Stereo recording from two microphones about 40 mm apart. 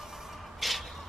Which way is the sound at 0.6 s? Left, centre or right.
Centre.